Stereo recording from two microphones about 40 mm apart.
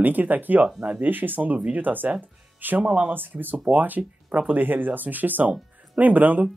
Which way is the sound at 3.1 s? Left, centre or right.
Right.